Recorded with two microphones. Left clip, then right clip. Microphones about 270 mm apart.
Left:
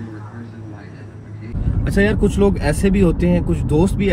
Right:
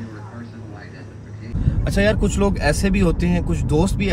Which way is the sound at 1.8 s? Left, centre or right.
Centre.